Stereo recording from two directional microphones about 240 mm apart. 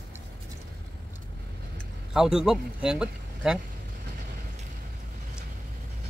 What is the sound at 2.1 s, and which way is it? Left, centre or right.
A man's voice, centre.